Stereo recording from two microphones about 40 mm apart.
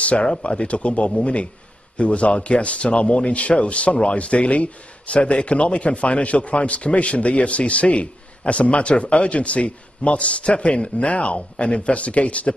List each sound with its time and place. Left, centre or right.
0.0 s speech: left